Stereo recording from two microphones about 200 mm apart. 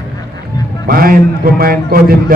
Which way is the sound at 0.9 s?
45° right (ahead or behind).